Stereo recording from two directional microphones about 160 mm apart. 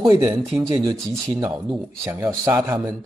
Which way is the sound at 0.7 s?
25° right (ahead or behind).